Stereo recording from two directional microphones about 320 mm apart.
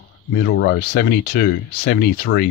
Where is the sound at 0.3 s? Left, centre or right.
Left.